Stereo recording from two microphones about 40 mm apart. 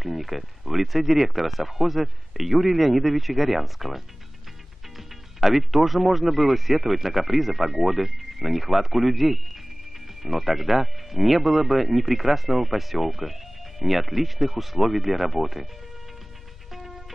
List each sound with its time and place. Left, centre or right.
0.0 s speech: centre
16.7 s music: centre